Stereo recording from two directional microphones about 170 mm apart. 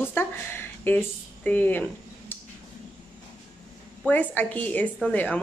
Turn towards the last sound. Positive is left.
turn(degrees=10)  # may be behind; listen again after turning